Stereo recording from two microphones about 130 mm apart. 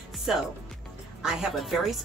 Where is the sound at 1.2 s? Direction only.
5° right (ahead or behind).